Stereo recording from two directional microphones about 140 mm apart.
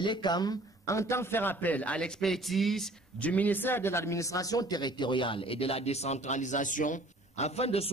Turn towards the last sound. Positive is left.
turn(degrees=45)  # may be behind; listen again after turning